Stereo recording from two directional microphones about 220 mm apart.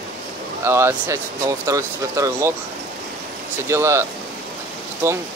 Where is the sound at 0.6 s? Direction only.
10° right (ahead or behind).